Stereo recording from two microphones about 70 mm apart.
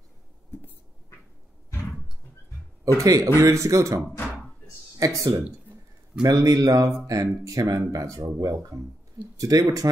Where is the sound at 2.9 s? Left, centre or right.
Right.